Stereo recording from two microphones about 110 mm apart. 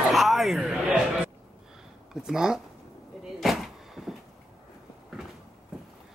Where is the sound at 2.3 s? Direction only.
5° right (ahead or behind).